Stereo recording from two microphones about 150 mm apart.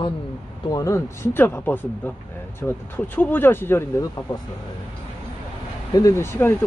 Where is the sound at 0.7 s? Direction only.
20° left (ahead or behind).